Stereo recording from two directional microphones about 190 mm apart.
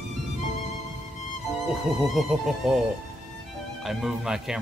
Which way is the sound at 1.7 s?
Centre (ahead or behind).